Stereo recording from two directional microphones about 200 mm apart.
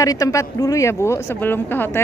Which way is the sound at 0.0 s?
15° left (ahead or behind).